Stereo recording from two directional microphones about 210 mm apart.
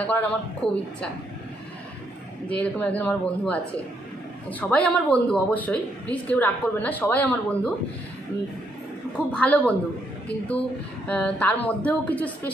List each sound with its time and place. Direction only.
0.0 s speech: 5° left (ahead or behind)
0.6 s a woman's voice: 30° left (ahead or behind)
2.6 s speech: 5° left (ahead or behind)
9.3 s speech: 5° left (ahead or behind)
11.1 s speech: 5° left (ahead or behind)